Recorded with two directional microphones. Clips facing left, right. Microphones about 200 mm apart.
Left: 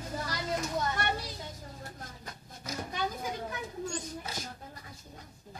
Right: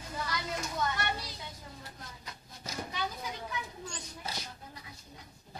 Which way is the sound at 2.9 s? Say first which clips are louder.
Left 5 dB; 45° left (ahead or behind).